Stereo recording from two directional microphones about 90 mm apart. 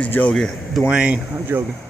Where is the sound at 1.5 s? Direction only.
25° right (ahead or behind).